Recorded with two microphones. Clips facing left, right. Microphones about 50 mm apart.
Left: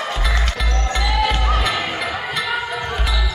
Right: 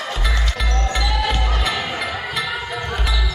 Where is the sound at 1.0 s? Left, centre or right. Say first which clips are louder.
Left 6 dB; centre.